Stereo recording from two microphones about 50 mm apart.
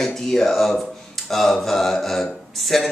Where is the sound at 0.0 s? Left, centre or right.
Centre.